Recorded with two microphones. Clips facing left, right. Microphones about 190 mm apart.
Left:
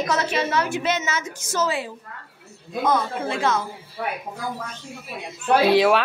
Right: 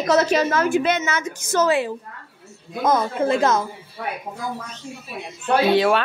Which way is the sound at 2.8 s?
45° right (ahead or behind).